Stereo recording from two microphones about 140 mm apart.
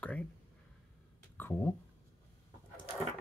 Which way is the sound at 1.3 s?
15° left (ahead or behind).